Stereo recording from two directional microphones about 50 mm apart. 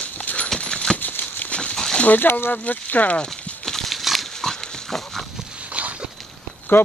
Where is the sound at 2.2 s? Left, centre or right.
Left.